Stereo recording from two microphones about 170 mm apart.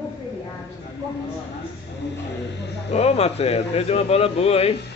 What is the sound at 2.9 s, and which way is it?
Speech, 40° left (ahead or behind).